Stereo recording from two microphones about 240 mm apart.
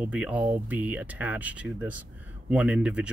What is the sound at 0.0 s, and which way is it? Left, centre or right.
Speech, centre.